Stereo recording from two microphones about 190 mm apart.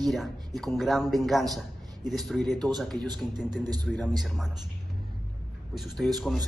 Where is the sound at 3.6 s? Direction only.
20° right (ahead or behind).